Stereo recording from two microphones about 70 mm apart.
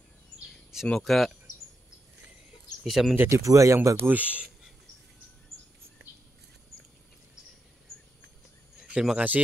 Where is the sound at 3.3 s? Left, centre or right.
Right.